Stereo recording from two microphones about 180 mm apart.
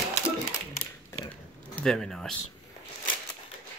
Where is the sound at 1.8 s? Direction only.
5° left (ahead or behind).